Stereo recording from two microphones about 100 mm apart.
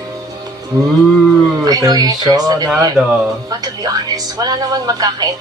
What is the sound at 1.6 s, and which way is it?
Speech, 40° right (ahead or behind).